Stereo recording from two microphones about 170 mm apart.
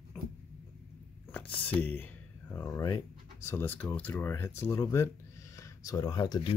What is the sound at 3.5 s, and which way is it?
Speech, 10° left (ahead or behind).